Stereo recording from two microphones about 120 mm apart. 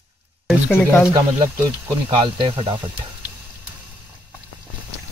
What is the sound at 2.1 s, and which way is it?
Speech, 45° right (ahead or behind).